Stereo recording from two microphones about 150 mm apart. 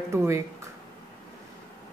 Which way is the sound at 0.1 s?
20° right (ahead or behind).